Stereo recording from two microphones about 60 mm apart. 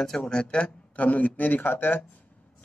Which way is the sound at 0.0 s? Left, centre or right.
Centre.